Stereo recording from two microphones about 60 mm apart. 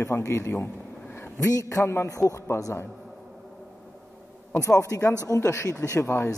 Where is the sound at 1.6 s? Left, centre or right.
Left.